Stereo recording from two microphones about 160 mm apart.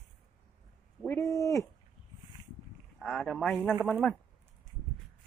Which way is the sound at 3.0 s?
Centre (ahead or behind).